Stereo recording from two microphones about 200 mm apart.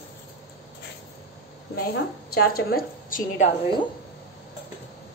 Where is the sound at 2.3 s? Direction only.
50° left (ahead or behind).